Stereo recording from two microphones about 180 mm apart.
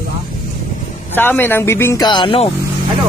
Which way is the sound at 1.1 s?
10° left (ahead or behind).